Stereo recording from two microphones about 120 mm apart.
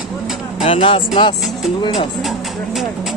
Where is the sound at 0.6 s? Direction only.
45° left (ahead or behind).